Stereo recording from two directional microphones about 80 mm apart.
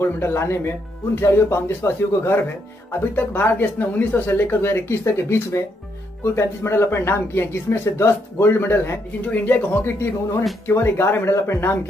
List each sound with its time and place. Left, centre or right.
0.0 s speech: left